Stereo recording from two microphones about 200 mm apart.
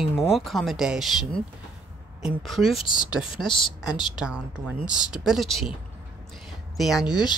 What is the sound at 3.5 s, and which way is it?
Speech, 25° left (ahead or behind).